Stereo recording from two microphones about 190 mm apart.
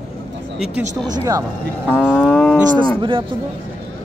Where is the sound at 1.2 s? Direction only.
15° right (ahead or behind).